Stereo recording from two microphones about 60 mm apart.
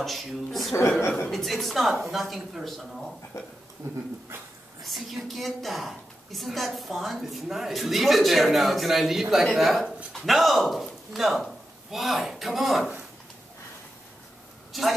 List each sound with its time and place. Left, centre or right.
0.0 s a woman's voice: centre
3.3 s speech: left
4.8 s a woman's voice: centre
14.7 s speech: centre